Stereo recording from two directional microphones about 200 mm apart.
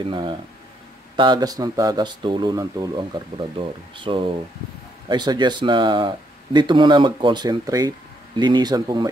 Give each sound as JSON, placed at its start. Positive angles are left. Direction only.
{"t": 0.1, "sound": "speech", "side_deg": -25}